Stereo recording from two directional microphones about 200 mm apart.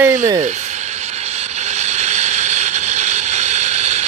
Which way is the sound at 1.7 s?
35° right (ahead or behind).